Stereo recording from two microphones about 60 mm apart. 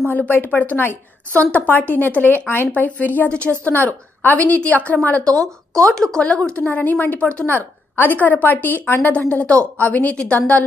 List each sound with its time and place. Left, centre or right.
0.0 s speech: left
3.3 s a woman's voice: centre
5.9 s a woman's voice: centre